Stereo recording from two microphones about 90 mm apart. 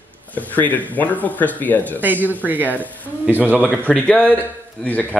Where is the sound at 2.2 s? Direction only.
20° right (ahead or behind).